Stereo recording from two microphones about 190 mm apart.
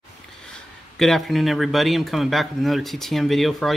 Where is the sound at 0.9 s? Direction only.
Centre (ahead or behind).